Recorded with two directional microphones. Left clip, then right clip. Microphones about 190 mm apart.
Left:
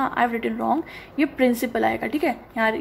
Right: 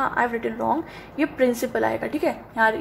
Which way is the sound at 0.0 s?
25° left (ahead or behind).